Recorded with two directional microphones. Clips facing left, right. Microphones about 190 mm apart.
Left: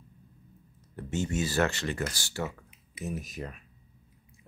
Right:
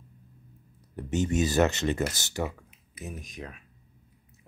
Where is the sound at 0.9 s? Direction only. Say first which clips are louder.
Right 4 dB; 15° right (ahead or behind).